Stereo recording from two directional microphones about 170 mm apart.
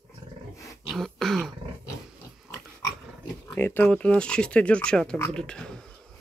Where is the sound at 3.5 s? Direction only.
10° left (ahead or behind).